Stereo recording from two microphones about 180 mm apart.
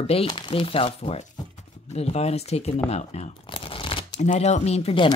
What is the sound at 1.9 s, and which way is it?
Speech, 35° left (ahead or behind).